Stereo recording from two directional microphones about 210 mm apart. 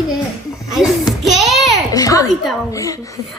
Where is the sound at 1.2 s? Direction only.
Centre (ahead or behind).